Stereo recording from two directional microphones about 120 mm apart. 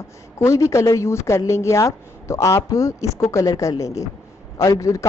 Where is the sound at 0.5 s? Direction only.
25° left (ahead or behind).